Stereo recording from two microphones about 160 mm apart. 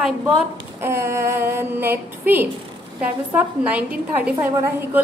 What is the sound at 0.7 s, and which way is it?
A woman's voice, 15° right (ahead or behind).